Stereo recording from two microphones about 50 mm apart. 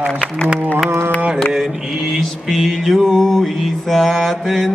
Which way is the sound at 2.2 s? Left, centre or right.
Centre.